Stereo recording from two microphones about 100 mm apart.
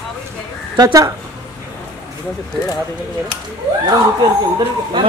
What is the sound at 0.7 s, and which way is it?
Speech, 35° right (ahead or behind).